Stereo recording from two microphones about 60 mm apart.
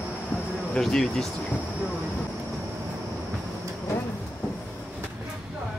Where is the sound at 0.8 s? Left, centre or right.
Centre.